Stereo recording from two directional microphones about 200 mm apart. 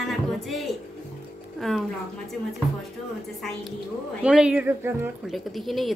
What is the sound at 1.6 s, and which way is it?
Speech, centre (ahead or behind).